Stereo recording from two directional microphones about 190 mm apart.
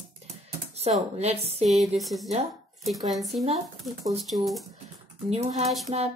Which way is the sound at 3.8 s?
Centre (ahead or behind).